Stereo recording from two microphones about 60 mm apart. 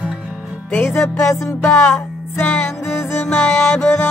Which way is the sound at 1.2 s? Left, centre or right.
Left.